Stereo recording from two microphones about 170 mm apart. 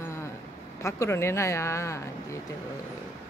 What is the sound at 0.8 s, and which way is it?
Speech, 15° left (ahead or behind).